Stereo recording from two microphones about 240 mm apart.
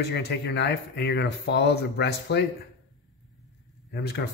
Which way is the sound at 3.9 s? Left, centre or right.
Left.